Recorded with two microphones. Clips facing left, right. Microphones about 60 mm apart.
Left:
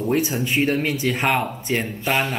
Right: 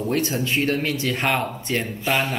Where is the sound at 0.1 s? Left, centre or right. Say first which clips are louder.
Left 2 dB; centre.